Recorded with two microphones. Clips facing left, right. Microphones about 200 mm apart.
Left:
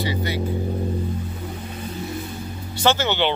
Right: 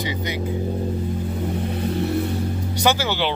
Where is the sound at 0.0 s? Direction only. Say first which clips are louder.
Left 1 dB; 15° right (ahead or behind).